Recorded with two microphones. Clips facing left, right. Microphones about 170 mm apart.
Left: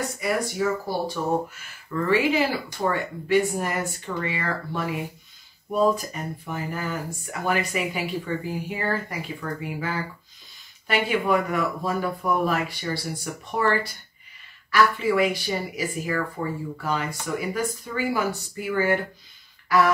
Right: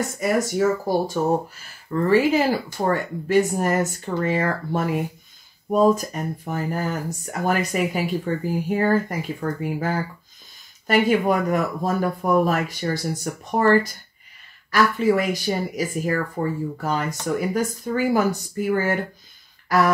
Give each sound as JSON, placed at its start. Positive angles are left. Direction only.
{"t": 0.2, "sound": "speech", "side_deg": -45}